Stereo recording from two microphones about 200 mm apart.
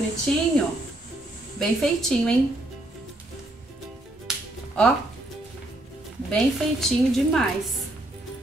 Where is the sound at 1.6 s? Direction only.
5° left (ahead or behind).